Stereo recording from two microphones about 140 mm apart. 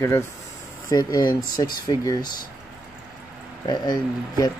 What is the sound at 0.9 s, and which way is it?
Speech, 30° left (ahead or behind).